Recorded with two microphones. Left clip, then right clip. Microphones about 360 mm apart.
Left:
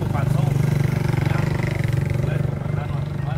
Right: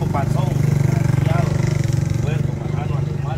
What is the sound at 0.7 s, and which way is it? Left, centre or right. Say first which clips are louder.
Vehicle: right 2 dB; left.